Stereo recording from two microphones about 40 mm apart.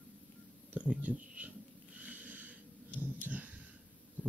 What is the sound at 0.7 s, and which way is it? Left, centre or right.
Speech, right.